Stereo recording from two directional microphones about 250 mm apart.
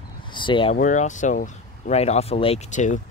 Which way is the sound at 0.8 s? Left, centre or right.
Left.